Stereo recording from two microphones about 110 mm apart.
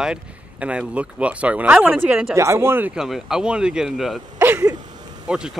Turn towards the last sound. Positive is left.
turn(degrees=-5)  # may be behind; listen again after turning